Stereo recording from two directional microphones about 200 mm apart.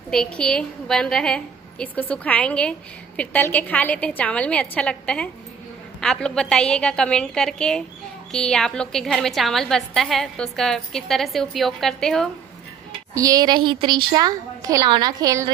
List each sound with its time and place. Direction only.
0.1 s a woman's voice: 5° left (ahead or behind)
13.1 s a woman's voice: 15° right (ahead or behind)